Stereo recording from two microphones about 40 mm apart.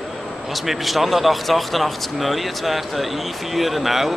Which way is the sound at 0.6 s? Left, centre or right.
Centre.